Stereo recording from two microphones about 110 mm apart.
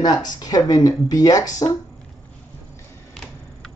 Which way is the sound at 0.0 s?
35° left (ahead or behind).